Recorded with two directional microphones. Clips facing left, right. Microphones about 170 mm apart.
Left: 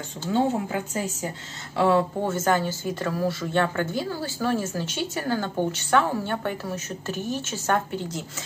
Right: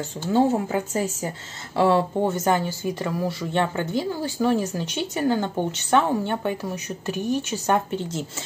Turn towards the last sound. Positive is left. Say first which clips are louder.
# right 3 dB
turn(degrees=-15)  # may be behind; listen again after turning